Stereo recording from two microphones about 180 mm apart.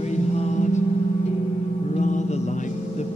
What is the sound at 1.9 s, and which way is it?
Music, 40° left (ahead or behind).